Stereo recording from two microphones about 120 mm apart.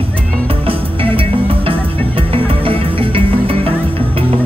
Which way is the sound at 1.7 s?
50° right (ahead or behind).